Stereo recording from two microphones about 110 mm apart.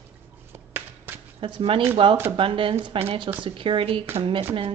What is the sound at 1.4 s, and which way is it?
Speech, 55° right (ahead or behind).